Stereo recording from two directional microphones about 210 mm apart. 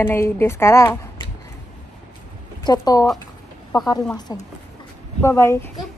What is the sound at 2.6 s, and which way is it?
A woman's voice, 20° left (ahead or behind).